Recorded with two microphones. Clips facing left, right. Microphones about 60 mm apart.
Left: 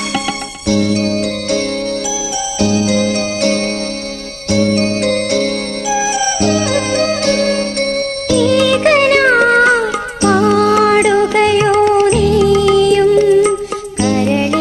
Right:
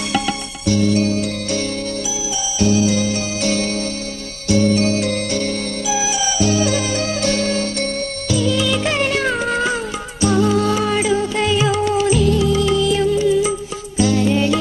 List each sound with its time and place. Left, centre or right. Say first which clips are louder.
0.7 s music: left 2 dB; left
2.6 s music: left 2 dB; left
5.9 s music: left 6 dB; left
11.5 s music: left 5 dB; left
12.3 s music: left 6 dB; left